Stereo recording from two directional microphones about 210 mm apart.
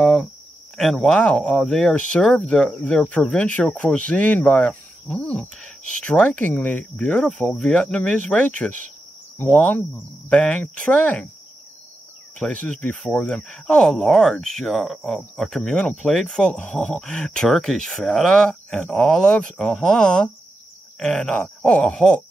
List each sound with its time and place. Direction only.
0.0 s speech: centre (ahead or behind)
9.4 s cricket: 5° left (ahead or behind)
12.4 s speech: 5° left (ahead or behind)